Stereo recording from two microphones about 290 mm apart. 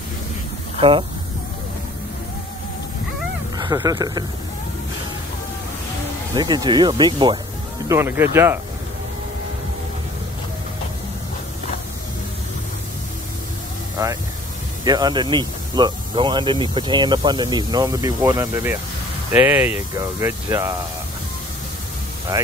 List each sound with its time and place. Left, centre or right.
0.7 s speech: centre
3.5 s speech: centre
6.3 s speech: centre
14.9 s speech: centre